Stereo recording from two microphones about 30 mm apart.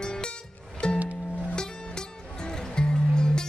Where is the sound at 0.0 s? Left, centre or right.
Left.